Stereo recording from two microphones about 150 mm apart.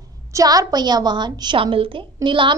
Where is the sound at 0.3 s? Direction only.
25° right (ahead or behind).